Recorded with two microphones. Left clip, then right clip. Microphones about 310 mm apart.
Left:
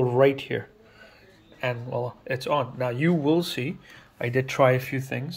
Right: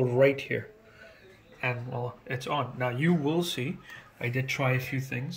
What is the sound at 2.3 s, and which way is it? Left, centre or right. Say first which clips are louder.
Speech: left 6 dB; centre.